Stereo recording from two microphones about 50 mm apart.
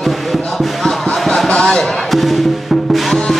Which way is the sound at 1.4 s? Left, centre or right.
Centre.